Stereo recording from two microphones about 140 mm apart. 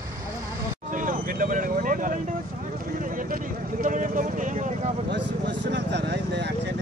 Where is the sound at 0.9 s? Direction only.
70° right (ahead or behind).